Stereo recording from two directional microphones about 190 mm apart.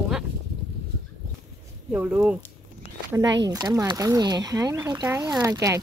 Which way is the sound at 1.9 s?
10° right (ahead or behind).